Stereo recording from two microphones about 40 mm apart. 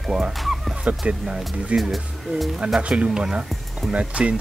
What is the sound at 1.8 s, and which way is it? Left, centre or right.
Speech, centre.